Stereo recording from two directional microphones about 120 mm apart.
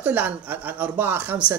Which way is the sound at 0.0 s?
15° right (ahead or behind).